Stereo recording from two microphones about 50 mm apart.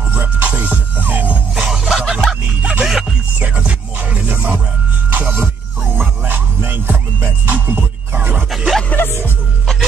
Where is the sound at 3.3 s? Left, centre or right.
Right.